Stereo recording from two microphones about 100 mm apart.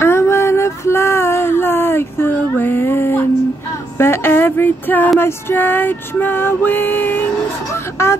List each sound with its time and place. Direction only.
0.0 s a sound: 25° left (ahead or behind)
3.7 s female singing: 25° left (ahead or behind)
5.2 s music: 20° left (ahead or behind)